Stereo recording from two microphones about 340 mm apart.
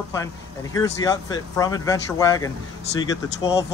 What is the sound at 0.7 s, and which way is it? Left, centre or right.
Speech, centre.